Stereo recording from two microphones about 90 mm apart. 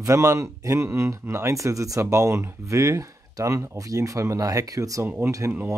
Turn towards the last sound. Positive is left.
turn(degrees=-35)  # may be behind; listen again after turning